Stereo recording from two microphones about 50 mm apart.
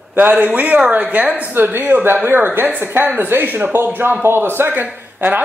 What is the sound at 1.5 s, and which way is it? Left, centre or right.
Speech, right.